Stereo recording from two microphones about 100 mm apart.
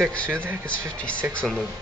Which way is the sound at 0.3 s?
20° right (ahead or behind).